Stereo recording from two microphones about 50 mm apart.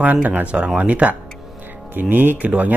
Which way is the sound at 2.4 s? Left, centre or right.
Right.